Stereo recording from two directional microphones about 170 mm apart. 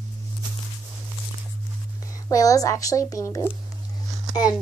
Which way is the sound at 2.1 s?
20° left (ahead or behind).